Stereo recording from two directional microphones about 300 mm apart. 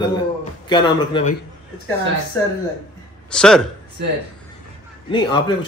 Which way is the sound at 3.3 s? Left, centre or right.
Centre.